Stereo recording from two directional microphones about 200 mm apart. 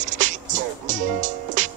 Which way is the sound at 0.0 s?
40° right (ahead or behind).